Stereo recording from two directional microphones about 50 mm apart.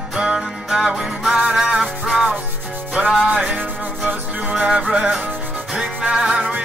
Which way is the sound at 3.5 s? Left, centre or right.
Right.